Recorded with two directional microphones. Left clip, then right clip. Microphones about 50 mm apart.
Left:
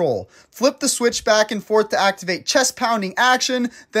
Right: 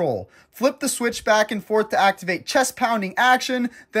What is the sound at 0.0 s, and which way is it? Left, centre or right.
Speech, left.